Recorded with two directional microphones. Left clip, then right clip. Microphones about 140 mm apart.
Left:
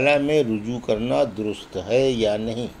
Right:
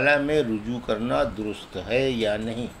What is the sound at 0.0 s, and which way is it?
Speech, 35° left (ahead or behind).